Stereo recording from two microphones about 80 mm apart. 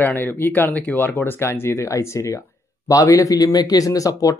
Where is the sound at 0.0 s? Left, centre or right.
Left.